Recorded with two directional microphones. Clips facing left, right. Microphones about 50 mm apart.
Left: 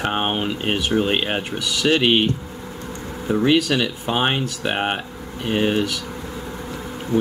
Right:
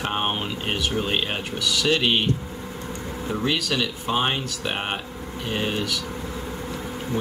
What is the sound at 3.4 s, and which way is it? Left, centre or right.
Speech, left.